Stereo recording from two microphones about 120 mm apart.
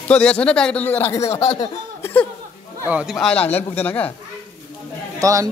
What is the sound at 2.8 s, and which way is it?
Speech, 10° right (ahead or behind).